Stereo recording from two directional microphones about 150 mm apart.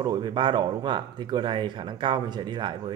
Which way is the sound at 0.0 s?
30° right (ahead or behind).